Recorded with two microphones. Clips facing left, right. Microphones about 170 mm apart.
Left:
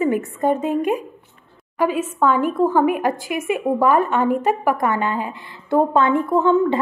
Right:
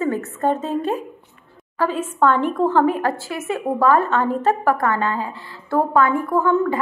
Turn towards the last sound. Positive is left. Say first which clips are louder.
# left 2 dB
turn(degrees=20)  # may be behind; listen again after turning